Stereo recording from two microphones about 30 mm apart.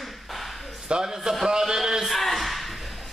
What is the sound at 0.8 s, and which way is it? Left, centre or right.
Speech, right.